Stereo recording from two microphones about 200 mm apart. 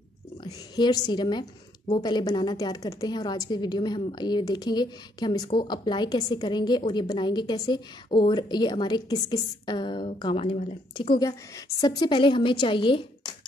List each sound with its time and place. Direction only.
0.4 s a woman's voice: 20° left (ahead or behind)